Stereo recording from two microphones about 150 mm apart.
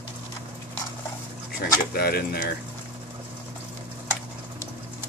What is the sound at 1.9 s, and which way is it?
Speech, 90° left.